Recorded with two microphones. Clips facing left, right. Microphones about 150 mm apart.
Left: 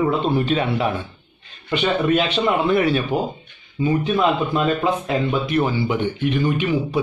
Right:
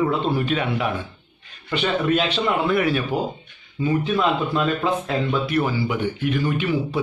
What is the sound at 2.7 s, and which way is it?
Speech, 25° left (ahead or behind).